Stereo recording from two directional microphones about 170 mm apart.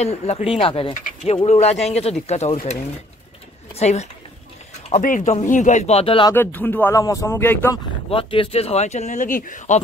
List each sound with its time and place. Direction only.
0.0 s speech: 40° left (ahead or behind)
6.3 s speech: 10° left (ahead or behind)
8.1 s speech: 30° left (ahead or behind); by 9.8 s 50° left (ahead or behind)